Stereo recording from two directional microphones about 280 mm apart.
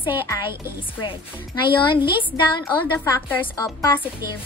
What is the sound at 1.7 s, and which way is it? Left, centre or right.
Speech, centre.